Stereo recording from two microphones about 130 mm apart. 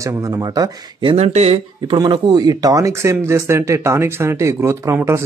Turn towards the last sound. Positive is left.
turn(degrees=-20)  # may be behind; listen again after turning